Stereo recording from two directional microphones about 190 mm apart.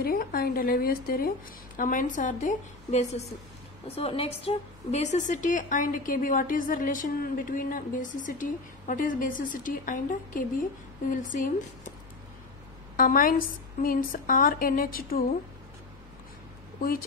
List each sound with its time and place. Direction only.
0.0 s a woman's voice: 50° left (ahead or behind)
12.9 s a woman's voice: 45° left (ahead or behind)